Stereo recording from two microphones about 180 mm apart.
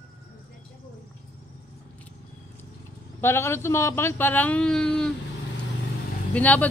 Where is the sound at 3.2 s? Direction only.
15° left (ahead or behind).